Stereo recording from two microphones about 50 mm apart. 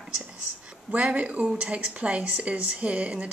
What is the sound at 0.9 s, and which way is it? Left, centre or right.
Speech, right.